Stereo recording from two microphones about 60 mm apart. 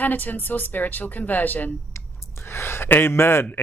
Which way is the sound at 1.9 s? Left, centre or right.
Left.